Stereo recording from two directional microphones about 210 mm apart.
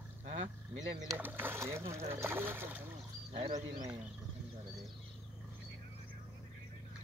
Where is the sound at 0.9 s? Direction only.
15° right (ahead or behind).